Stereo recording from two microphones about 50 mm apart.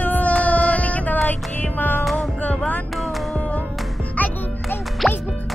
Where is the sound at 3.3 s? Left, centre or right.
Left.